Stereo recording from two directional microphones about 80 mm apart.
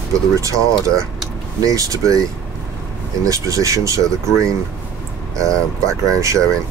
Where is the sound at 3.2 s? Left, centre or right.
Right.